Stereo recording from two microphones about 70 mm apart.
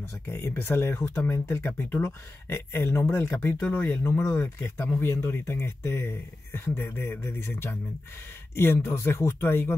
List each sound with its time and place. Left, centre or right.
0.3 s speech: left